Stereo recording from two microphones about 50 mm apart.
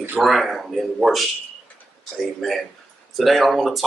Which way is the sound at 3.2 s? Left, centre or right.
Centre.